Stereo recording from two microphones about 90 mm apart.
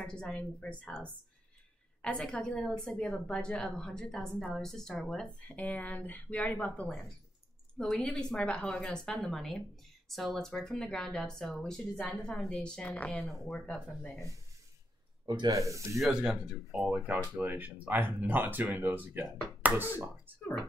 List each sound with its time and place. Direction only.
0.0 s a woman's voice: 10° left (ahead or behind)
2.0 s a woman's voice: 10° left (ahead or behind)
13.2 s speech: 5° left (ahead or behind)
15.2 s speech: 50° right (ahead or behind)
15.5 s speech: 35° right (ahead or behind)
16.0 s speech: 5° right (ahead or behind)